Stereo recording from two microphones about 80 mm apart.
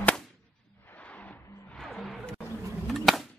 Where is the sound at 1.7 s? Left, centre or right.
Centre.